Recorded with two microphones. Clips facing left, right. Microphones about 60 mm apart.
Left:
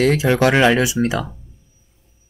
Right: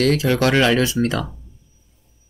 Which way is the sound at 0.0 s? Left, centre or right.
Left.